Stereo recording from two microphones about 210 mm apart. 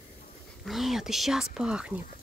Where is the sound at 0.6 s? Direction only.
Centre (ahead or behind).